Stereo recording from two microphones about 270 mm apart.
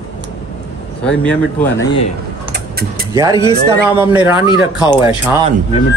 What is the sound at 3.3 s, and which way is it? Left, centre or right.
Speech, centre.